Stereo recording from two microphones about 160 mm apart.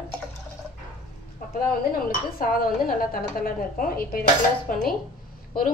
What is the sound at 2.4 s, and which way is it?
A woman's voice, 60° left (ahead or behind).